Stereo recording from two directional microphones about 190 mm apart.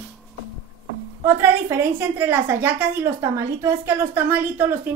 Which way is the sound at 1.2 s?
10° right (ahead or behind).